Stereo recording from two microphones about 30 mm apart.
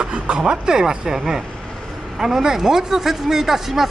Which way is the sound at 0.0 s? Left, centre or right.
Right.